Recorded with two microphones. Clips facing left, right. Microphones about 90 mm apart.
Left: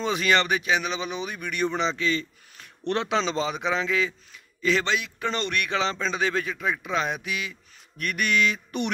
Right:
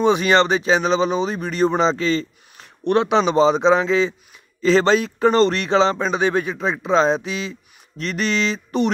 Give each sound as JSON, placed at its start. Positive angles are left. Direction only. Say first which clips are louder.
{"t": 0.0, "sound": "speech", "louder": "right 8 dB", "side_deg": -25}
{"t": 2.5, "sound": "a man's voice", "louder": "right 9 dB", "side_deg": -20}